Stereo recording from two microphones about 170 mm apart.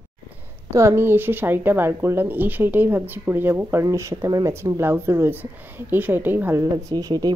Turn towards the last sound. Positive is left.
turn(degrees=-20)  # may be behind; listen again after turning